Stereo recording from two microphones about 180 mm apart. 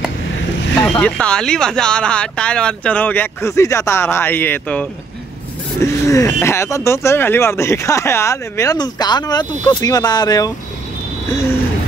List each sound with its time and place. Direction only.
0.7 s speech: 10° left (ahead or behind)